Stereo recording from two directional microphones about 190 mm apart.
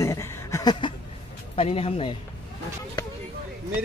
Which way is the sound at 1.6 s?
30° left (ahead or behind).